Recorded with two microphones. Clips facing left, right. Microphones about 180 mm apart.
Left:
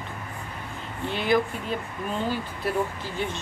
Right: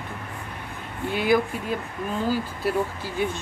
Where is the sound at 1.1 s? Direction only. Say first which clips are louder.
Right 2 dB; 10° right (ahead or behind).